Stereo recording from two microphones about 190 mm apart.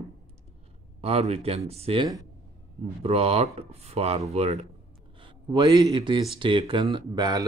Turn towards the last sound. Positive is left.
turn(degrees=-20)  # may be behind; listen again after turning